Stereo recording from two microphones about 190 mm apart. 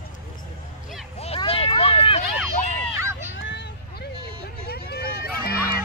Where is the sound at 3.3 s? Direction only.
75° left (ahead or behind); by 5.5 s 55° left (ahead or behind).